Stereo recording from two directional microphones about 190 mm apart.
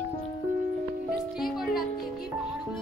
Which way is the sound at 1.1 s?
Centre (ahead or behind).